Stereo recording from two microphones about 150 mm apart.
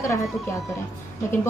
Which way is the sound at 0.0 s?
20° left (ahead or behind).